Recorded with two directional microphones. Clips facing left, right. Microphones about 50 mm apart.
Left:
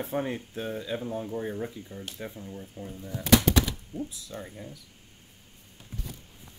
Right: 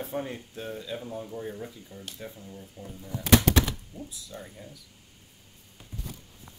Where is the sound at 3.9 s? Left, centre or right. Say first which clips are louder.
Left 7 dB; left.